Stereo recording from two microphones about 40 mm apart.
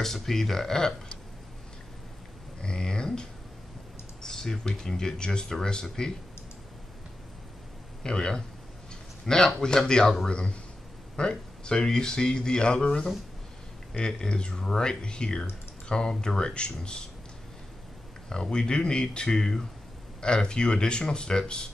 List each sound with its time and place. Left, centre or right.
0.0 s speech: centre
2.6 s speech: left
8.0 s speech: centre
18.3 s speech: centre